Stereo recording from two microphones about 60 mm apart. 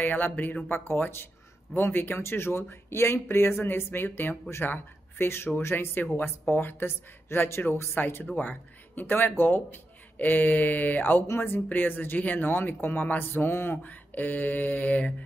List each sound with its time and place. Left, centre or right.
0.0 s speech: left